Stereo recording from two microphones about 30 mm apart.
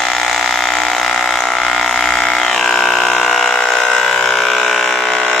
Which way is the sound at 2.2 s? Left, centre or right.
Centre.